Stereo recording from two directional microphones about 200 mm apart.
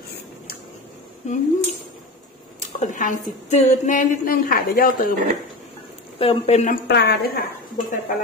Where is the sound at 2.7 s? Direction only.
40° left (ahead or behind).